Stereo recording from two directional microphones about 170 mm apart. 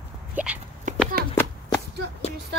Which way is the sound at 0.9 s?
50° right (ahead or behind).